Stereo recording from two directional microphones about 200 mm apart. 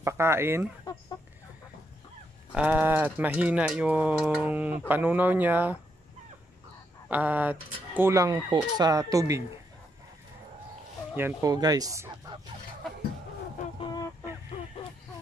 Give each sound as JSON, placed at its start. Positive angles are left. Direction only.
{"t": 0.0, "sound": "speech", "side_deg": -15}
{"t": 0.9, "sound": "chicken", "side_deg": 20}
{"t": 2.5, "sound": "speech", "side_deg": -10}
{"t": 7.1, "sound": "speech", "side_deg": -10}
{"t": 11.1, "sound": "speech", "side_deg": -15}
{"t": 13.7, "sound": "fowl", "side_deg": 20}